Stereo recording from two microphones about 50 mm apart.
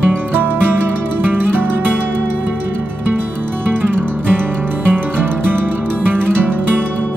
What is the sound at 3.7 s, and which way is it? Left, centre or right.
Music, right.